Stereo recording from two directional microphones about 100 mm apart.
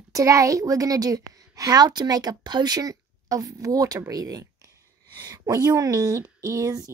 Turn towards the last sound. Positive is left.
turn(degrees=-35)  # may be behind; listen again after turning